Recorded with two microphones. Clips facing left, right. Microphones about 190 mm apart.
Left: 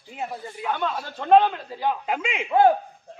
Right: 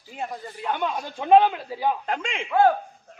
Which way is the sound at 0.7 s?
15° right (ahead or behind).